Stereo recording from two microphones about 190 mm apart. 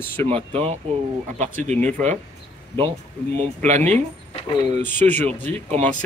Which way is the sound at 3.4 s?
35° right (ahead or behind).